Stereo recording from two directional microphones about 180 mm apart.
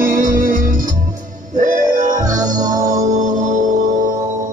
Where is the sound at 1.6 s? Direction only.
45° right (ahead or behind).